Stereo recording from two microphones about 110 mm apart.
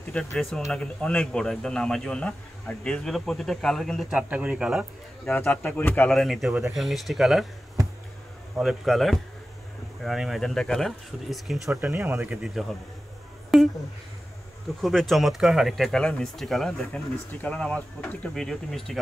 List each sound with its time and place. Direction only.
0.1 s a man's voice: 5° left (ahead or behind)
4.3 s speech: 10° right (ahead or behind)
5.3 s a man's voice: 15° left (ahead or behind)
6.0 s speech: centre (ahead or behind)
8.5 s speech: centre (ahead or behind)
12.1 s speech: 20° right (ahead or behind)
12.4 s speech: centre (ahead or behind)
14.8 s speech: centre (ahead or behind)